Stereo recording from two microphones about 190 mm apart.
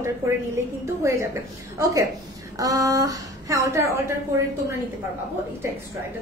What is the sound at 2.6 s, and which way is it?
A woman's voice, 20° right (ahead or behind).